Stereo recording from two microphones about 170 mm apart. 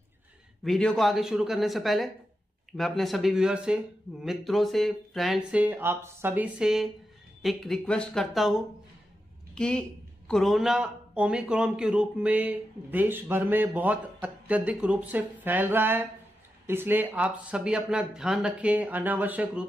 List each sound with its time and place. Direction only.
0.7 s a man's voice: 5° left (ahead or behind)